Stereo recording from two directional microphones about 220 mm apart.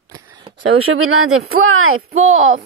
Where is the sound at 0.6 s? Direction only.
75° right (ahead or behind).